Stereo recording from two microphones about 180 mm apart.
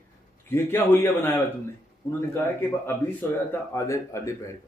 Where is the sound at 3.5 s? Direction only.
15° left (ahead or behind).